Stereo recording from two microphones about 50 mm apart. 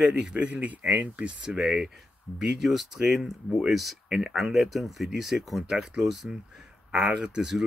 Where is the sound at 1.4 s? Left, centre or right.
Centre.